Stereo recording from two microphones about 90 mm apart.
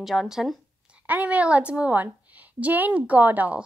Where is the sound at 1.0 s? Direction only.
15° right (ahead or behind).